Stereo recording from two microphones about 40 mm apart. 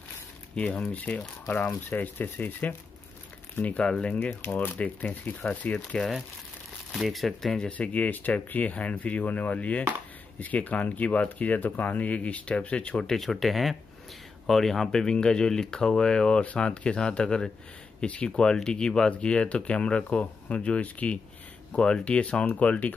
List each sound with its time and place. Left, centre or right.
0.6 s speech: left
0.9 s speech: left
1.9 s speech: left
3.6 s speech: left
4.5 s speech: left
5.9 s speech: left
6.9 s speech: centre
7.7 s speech: left
12.9 s speech: centre
13.2 s speech: centre; by 22.5 s left
22.5 s speech: left